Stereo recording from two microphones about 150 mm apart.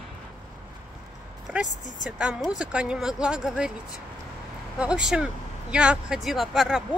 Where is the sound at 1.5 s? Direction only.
5° right (ahead or behind).